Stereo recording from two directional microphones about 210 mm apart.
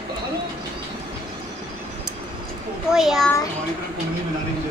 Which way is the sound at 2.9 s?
Centre (ahead or behind).